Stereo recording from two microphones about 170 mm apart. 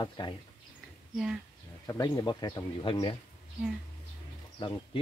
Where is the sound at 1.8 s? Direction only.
20° left (ahead or behind).